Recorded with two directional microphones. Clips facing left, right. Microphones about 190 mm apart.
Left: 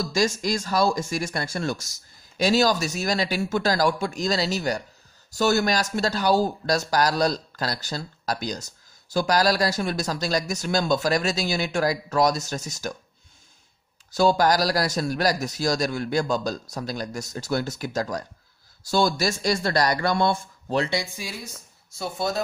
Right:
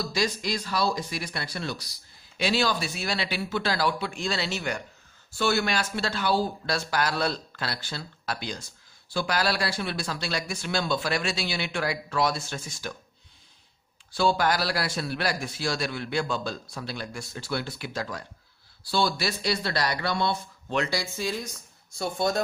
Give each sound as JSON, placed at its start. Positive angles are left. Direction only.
{"t": 0.0, "sound": "speech", "side_deg": 45}
{"t": 14.1, "sound": "speech", "side_deg": 40}
{"t": 20.7, "sound": "speech", "side_deg": 30}
{"t": 21.0, "sound": "speech", "side_deg": 10}